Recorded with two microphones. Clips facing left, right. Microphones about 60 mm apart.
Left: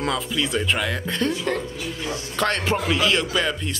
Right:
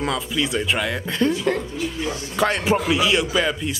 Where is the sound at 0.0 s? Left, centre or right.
Centre.